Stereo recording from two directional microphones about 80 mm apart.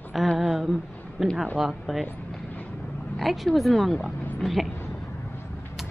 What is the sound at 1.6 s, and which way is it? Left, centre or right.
Speech, centre.